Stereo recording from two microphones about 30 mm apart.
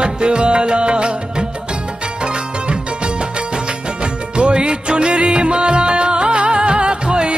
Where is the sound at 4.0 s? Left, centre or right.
Right.